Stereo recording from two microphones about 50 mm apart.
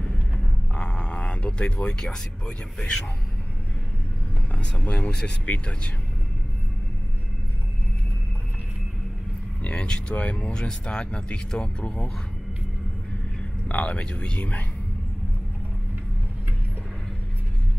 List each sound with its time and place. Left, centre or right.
0.7 s speech: left
4.6 s speech: left
9.6 s speech: left
13.7 s speech: left